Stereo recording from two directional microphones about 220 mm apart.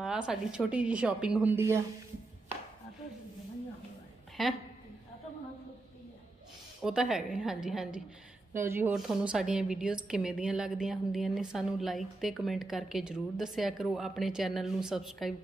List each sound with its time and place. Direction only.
0.0 s a woman's voice: 5° right (ahead or behind)
4.4 s a woman's voice: centre (ahead or behind)
6.8 s a woman's voice: centre (ahead or behind)